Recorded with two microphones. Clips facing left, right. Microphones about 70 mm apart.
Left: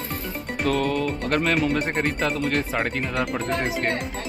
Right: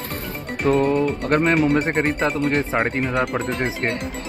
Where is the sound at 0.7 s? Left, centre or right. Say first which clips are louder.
Right 6 dB; right.